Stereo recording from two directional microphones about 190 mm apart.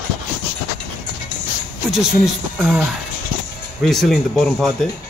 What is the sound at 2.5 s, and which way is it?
Speech, 5° right (ahead or behind).